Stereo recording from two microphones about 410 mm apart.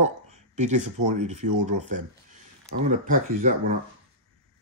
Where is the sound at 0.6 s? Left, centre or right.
Centre.